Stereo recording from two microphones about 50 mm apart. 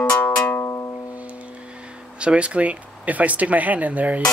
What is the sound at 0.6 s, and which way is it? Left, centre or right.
Music, left.